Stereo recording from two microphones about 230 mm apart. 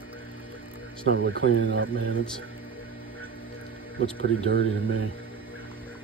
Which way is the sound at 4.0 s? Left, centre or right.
Right.